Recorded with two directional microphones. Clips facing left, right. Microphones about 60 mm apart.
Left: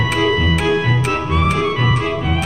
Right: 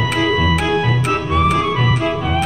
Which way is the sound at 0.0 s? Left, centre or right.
Centre.